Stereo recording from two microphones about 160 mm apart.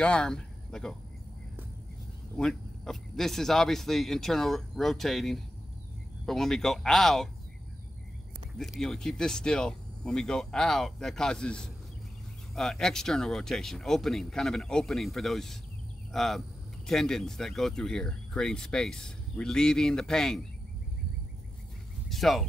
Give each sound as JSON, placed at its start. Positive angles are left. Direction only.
{"t": 0.0, "sound": "speech", "side_deg": 5}
{"t": 2.3, "sound": "speech", "side_deg": 5}
{"t": 8.5, "sound": "speech", "side_deg": 0}
{"t": 22.1, "sound": "speech", "side_deg": 0}